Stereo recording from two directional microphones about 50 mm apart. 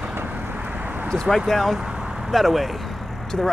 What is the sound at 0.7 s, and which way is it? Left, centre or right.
Vehicle, right.